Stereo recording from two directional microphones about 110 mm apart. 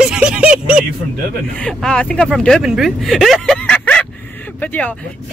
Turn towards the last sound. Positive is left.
turn(degrees=10)  # may be behind; listen again after turning